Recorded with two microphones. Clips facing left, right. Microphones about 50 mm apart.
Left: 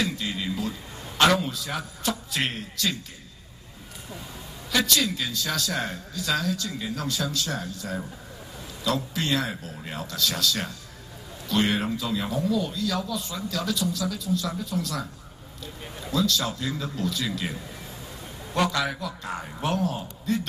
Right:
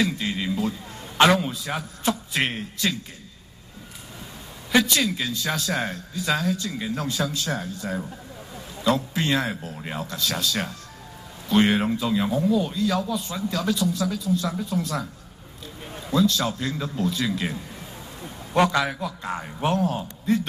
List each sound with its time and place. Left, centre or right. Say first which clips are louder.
0.2 s a sound: right 4 dB; right
1.8 s speech: right 3 dB; right
4.6 s a sound: right 4 dB; right
5.0 s speech: right 3 dB; centre
11.8 s speech: right 5 dB; centre
16.1 s speech: right 4 dB; right
18.5 s a man's voice: right 4 dB; right